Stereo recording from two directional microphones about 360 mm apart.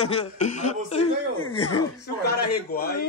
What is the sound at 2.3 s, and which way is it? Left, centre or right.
Speech, left.